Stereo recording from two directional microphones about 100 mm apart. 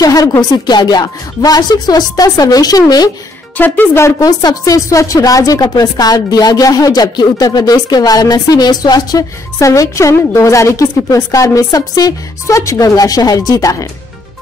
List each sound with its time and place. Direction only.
0.0 s speech: 40° left (ahead or behind)
3.5 s speech: 20° left (ahead or behind)
4.2 s speech: 40° left (ahead or behind)
9.6 s speech: 30° left (ahead or behind)